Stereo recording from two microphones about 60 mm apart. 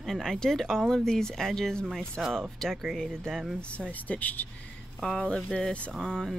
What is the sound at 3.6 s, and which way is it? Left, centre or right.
Speech, centre.